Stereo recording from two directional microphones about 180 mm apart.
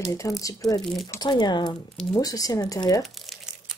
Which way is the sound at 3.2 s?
Centre (ahead or behind).